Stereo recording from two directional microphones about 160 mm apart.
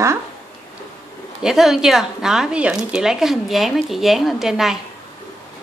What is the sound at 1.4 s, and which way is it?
Speech, 5° right (ahead or behind).